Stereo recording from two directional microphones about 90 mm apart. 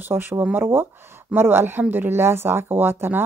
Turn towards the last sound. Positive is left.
turn(degrees=-25)  # may be behind; listen again after turning